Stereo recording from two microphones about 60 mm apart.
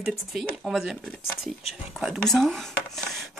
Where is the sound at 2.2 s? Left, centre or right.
Centre.